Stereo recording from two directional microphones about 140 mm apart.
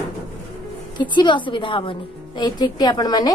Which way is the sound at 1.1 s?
35° left (ahead or behind).